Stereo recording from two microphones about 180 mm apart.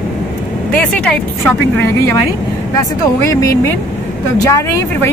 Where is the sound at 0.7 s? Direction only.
5° left (ahead or behind).